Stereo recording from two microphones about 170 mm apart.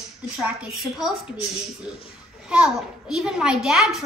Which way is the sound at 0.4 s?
5° right (ahead or behind).